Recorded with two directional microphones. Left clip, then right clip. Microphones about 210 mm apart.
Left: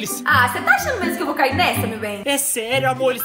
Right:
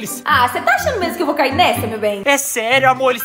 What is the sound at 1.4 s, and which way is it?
Speech, 45° right (ahead or behind).